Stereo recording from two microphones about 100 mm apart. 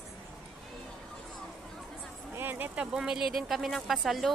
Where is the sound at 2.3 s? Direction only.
20° right (ahead or behind).